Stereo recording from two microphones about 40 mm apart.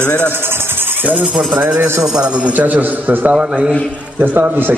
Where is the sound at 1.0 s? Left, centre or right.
Right.